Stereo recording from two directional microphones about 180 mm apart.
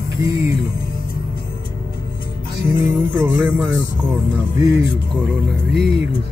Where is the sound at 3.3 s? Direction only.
10° right (ahead or behind).